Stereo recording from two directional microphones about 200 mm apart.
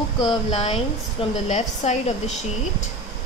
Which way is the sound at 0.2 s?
25° left (ahead or behind).